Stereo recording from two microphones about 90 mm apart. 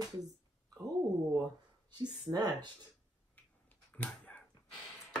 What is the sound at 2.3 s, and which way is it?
Speech, 45° right (ahead or behind).